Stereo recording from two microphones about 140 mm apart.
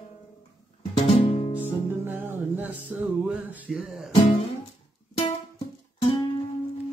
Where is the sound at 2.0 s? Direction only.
15° right (ahead or behind).